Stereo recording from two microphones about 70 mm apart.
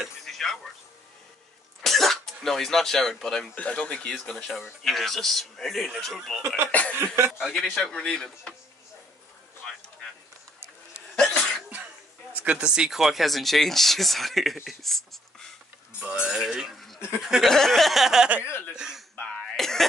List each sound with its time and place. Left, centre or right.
0.2 s a sound: centre
1.8 s speech: centre
3.5 s speech: centre
6.4 s speech: right
6.7 s speech: left
7.2 s speech: centre
7.7 s speech: centre
12.4 s speech: centre
16.0 s a sound: centre
17.2 s speech: centre
17.5 s speech: centre
18.4 s speech: left
18.8 s a sound: centre
19.5 s throat clearing: centre